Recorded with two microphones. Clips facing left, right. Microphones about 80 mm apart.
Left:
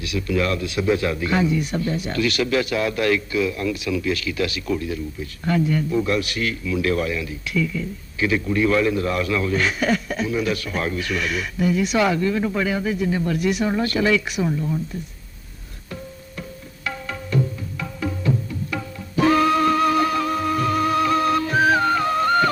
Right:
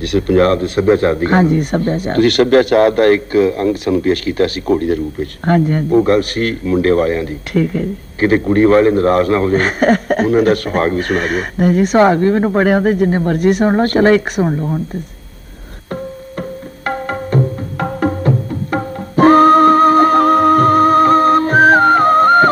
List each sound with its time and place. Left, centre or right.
0.0 s speech: right
16.8 s tabla: right